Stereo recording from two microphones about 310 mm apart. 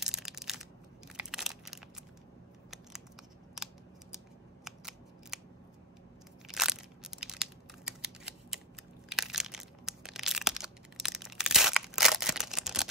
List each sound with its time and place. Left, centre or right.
0.0 s crushing: centre
3.5 s scissors: centre
6.4 s crushing: centre
9.1 s a sound: centre